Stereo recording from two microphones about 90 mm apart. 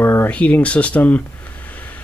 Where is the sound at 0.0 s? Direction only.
25° left (ahead or behind).